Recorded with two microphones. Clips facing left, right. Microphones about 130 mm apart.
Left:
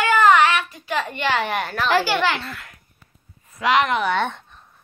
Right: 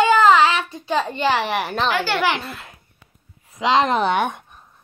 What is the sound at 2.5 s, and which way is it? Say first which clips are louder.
Babbling: right 2 dB; 25° right (ahead or behind).